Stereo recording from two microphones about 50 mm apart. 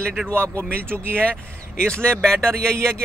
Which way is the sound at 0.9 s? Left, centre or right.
Left.